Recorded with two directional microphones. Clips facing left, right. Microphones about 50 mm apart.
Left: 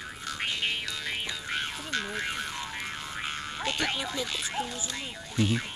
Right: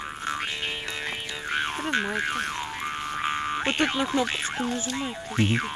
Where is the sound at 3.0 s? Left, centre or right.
Right.